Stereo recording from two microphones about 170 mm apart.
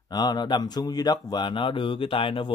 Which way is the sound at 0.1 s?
25° left (ahead or behind).